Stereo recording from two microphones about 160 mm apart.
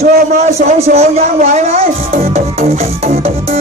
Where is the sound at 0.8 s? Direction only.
45° right (ahead or behind).